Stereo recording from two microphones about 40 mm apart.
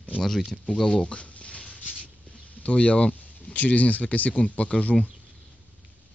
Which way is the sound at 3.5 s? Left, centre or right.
Left.